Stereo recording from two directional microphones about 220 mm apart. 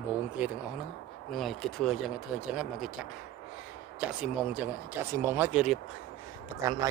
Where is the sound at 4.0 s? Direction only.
5° right (ahead or behind).